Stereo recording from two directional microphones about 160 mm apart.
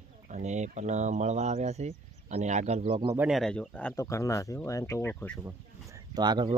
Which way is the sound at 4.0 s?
20° left (ahead or behind).